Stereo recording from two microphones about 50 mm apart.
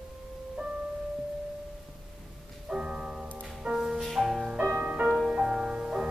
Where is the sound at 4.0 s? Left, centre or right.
Centre.